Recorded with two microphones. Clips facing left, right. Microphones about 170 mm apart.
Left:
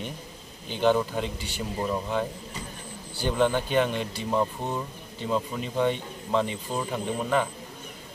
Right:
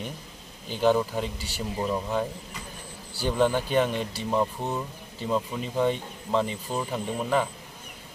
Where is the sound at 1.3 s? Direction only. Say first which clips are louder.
Left 2 dB; 35° right (ahead or behind).